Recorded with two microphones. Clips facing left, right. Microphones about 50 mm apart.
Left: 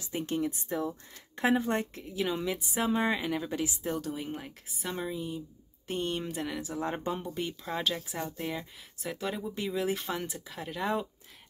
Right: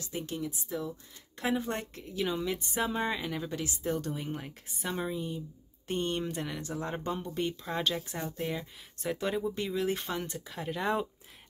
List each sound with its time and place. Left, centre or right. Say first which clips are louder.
0.1 s a woman's voice: left 3 dB; centre
0.7 s speech: left 3 dB; left
1.6 s a woman's voice: left 4 dB; centre
3.9 s a woman's voice: even; centre
7.3 s speech: right 1 dB; centre